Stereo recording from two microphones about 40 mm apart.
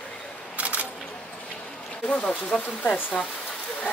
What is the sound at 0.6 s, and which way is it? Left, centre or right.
Single-lens reflex camera, right.